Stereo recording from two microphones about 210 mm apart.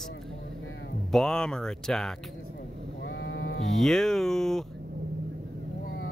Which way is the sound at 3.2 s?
55° left (ahead or behind).